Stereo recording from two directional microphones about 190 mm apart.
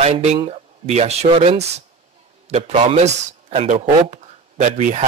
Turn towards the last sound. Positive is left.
turn(degrees=-40)  # may be behind; listen again after turning